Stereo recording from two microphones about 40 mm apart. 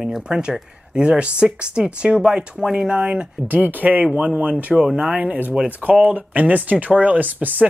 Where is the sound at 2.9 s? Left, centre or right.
Right.